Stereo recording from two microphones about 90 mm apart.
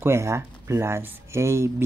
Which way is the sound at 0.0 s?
30° right (ahead or behind).